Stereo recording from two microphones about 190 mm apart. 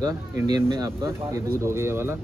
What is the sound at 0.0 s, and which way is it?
Speech, 15° right (ahead or behind).